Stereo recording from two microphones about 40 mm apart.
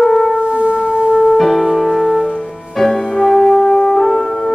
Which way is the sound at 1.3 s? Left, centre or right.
Centre.